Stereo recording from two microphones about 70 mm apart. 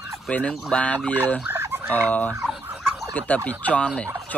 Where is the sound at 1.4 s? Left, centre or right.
Right.